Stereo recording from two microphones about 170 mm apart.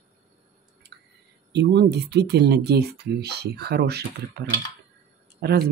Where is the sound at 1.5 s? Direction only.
90° right.